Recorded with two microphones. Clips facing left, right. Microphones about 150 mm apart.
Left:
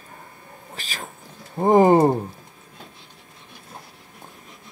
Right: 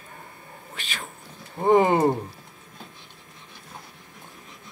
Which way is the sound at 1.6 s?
40° left (ahead or behind).